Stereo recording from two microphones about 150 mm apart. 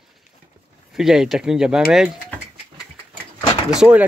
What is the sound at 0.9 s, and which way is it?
Speech, 5° right (ahead or behind).